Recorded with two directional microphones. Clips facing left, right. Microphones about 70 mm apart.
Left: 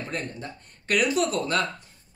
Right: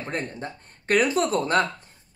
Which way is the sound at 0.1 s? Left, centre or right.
Right.